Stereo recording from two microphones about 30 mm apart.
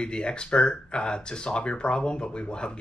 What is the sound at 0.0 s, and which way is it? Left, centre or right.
Speech, left.